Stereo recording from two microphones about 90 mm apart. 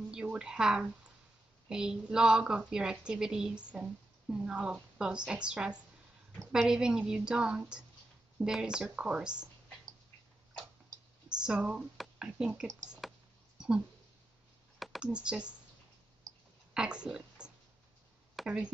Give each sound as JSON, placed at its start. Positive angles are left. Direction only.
{"t": 0.1, "sound": "a woman's voice", "side_deg": -10}
{"t": 11.3, "sound": "speech", "side_deg": -10}
{"t": 14.8, "sound": "computer keyboard", "side_deg": 0}
{"t": 15.0, "sound": "a woman's voice", "side_deg": -10}
{"t": 16.3, "sound": "clicking", "side_deg": -40}
{"t": 16.7, "sound": "speech", "side_deg": -10}
{"t": 18.4, "sound": "a sound", "side_deg": 0}